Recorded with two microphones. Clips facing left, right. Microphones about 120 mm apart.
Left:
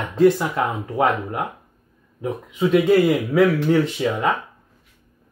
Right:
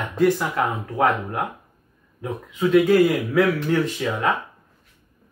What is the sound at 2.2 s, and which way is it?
Speech, 20° left (ahead or behind).